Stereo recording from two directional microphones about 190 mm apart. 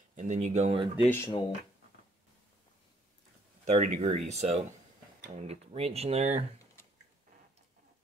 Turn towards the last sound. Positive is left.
turn(degrees=-35)  # may be behind; listen again after turning